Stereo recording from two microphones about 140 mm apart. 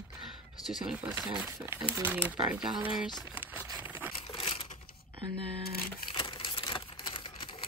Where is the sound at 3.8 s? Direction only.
10° right (ahead or behind).